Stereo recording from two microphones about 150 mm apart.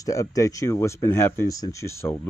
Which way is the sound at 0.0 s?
20° left (ahead or behind).